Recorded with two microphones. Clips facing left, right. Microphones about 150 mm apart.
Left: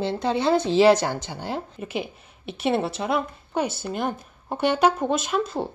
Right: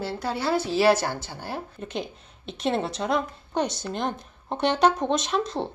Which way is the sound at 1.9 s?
5° left (ahead or behind).